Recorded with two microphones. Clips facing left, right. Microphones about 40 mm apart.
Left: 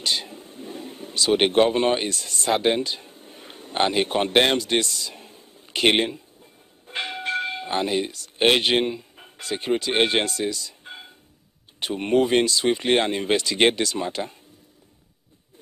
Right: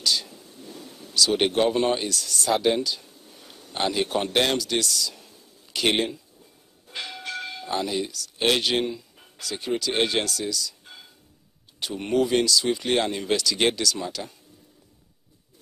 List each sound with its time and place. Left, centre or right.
0.0 s speech: left